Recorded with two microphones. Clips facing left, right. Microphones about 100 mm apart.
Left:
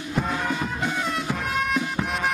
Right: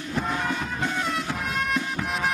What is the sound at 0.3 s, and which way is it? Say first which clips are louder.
Music: left 1 dB; 5° left (ahead or behind).